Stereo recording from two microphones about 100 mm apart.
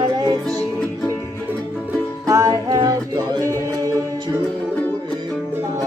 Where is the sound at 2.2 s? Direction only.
35° right (ahead or behind).